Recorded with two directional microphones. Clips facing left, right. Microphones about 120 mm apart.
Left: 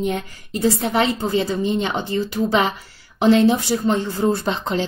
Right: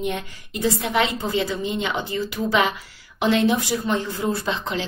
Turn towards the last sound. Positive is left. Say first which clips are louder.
# left 4 dB
turn(degrees=35)  # may be behind; listen again after turning